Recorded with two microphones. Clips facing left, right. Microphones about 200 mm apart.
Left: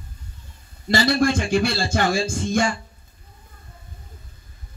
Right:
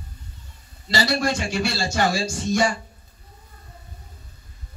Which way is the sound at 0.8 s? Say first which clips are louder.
Left 4 dB; 50° left (ahead or behind).